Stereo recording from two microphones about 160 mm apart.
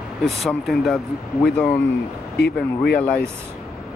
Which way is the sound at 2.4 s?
80° left.